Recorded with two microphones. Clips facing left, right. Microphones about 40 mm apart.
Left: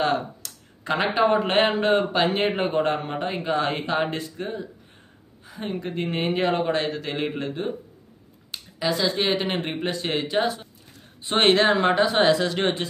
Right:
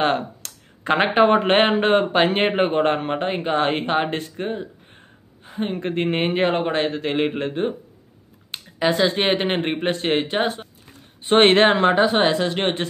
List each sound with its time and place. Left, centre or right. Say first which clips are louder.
0.0 s a man's voice: right 3 dB; right
11.8 s a man's voice: right 3 dB; right